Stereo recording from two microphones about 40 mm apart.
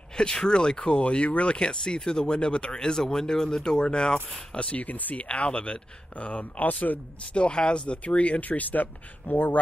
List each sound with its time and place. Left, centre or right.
0.2 s speech: left
4.7 s speech: left
5.3 s speech: left
6.6 s speech: left
7.3 s speech: left
8.5 s speech: left